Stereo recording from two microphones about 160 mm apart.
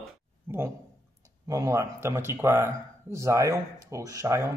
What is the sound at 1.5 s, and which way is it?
Speech, 20° right (ahead or behind).